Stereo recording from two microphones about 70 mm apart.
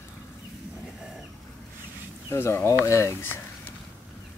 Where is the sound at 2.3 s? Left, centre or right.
Left.